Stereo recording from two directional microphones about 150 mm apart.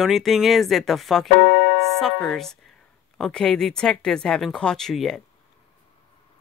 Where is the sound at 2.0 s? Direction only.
Centre (ahead or behind).